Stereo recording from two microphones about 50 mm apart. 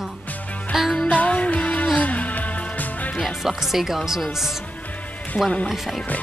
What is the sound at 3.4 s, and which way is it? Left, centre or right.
Speech, centre.